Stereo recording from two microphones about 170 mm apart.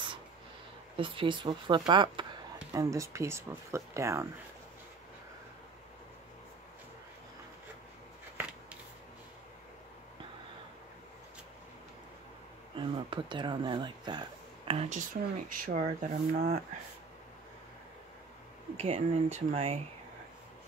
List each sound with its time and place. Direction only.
0.9 s speech: 30° right (ahead or behind)
12.7 s speech: 30° right (ahead or behind)
14.7 s speech: 40° right (ahead or behind); by 16.4 s 60° right (ahead or behind)
18.8 s speech: 40° right (ahead or behind)